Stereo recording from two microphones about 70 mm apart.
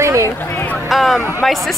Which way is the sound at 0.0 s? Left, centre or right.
Right.